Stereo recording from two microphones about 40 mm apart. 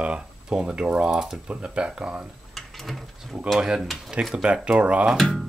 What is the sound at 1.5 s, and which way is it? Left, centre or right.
Speech, right.